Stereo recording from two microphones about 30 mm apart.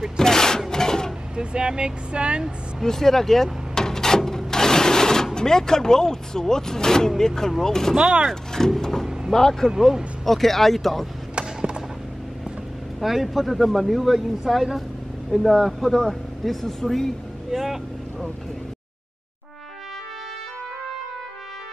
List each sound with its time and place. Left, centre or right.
0.2 s a sound: centre
1.3 s speech: right
2.8 s speech: centre
3.7 s a sound: centre
7.1 s speech: centre
7.9 s speech: right
8.3 s speech: centre
10.2 s speech: centre
13.0 s speech: centre
15.3 s speech: centre
17.5 s vehicle: centre